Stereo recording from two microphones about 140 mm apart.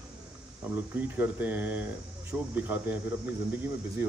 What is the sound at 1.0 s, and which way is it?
A man's voice, 10° right (ahead or behind).